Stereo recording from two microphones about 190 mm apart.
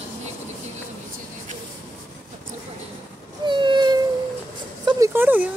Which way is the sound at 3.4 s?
25° right (ahead or behind).